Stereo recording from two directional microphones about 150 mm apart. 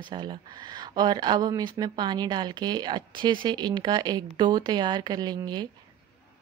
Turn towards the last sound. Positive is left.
turn(degrees=-30)  # may be behind; listen again after turning